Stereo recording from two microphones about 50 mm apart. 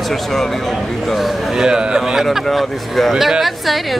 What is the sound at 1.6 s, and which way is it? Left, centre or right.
Speech, centre.